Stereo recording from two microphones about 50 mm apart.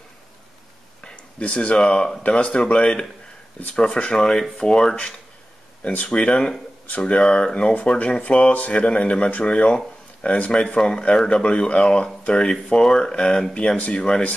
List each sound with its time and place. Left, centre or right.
1.0 s speech: left; by 4.9 s centre
5.9 s speech: left
13.7 s speech: left